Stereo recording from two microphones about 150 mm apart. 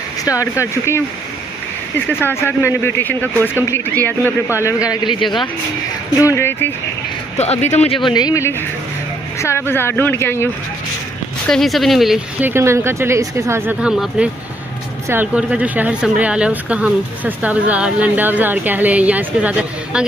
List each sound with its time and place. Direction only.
0.2 s speech: 20° left (ahead or behind)
2.0 s a man's voice: 15° left (ahead or behind)
4.8 s a man's voice: 30° left (ahead or behind)
6.1 s a man's voice: 20° left (ahead or behind)
7.3 s a man's voice: 45° left (ahead or behind); by 10.5 s 15° left (ahead or behind)
11.4 s speech: centre (ahead or behind)
12.4 s speech: 15° right (ahead or behind)
13.7 s speech: 5° right (ahead or behind)